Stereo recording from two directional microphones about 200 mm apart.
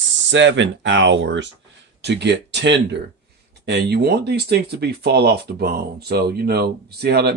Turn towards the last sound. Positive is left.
turn(degrees=-55)  # may be behind; listen again after turning